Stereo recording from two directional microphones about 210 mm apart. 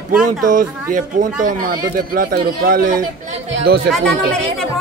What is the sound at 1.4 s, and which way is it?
Speech, 40° right (ahead or behind).